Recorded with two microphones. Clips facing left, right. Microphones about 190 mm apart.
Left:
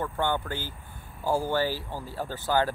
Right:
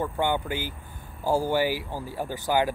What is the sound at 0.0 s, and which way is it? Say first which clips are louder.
Speech: right 2 dB; 15° right (ahead or behind).